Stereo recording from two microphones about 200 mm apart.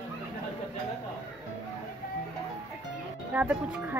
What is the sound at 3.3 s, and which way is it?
Speech, 5° right (ahead or behind).